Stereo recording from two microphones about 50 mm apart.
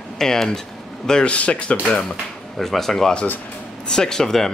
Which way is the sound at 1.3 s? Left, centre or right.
Left.